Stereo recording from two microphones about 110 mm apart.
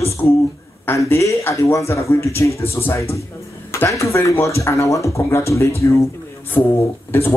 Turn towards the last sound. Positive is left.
turn(degrees=20)  # may be behind; listen again after turning